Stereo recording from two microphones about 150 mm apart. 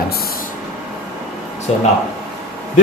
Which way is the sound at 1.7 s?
45° left (ahead or behind).